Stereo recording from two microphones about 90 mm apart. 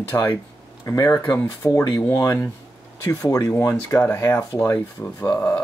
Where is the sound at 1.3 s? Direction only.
35° left (ahead or behind).